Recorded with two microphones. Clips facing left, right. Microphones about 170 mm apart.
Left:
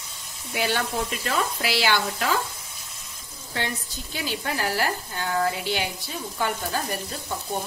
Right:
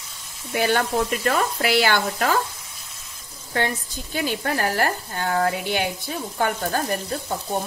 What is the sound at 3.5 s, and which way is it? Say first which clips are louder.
Speech: right 6 dB; 50° right (ahead or behind).